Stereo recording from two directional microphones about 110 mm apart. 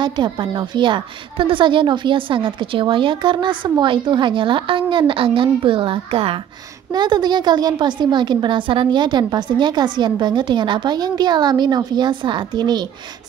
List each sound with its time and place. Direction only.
0.0 s a woman's voice: 45° right (ahead or behind)
6.9 s a woman's voice: 40° right (ahead or behind)